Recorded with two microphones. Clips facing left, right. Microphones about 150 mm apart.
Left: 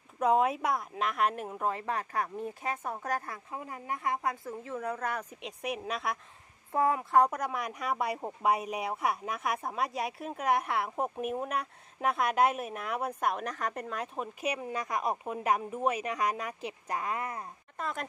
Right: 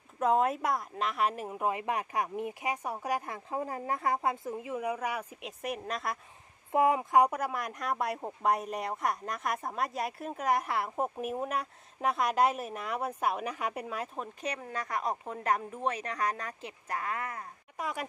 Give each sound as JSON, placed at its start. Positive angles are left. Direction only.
{"t": 0.2, "sound": "speech", "side_deg": 0}
{"t": 3.4, "sound": "a woman's voice", "side_deg": -35}
{"t": 4.5, "sound": "speech", "side_deg": -15}
{"t": 6.7, "sound": "speech", "side_deg": -20}
{"t": 17.7, "sound": "speech", "side_deg": -10}